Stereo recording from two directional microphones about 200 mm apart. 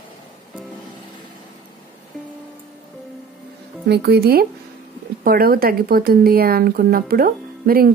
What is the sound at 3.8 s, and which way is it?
Speech, 55° right (ahead or behind).